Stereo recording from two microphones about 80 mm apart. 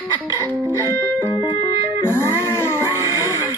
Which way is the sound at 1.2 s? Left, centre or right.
Right.